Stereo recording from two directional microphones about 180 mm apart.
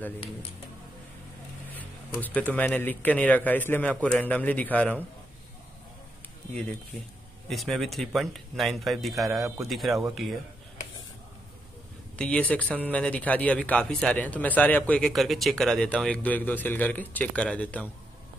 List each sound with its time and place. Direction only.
2.1 s a man's voice: 10° left (ahead or behind)
7.4 s speech: centre (ahead or behind)
12.2 s a man's voice: 5° left (ahead or behind)